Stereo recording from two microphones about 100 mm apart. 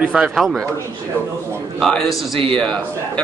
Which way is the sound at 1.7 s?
Centre (ahead or behind).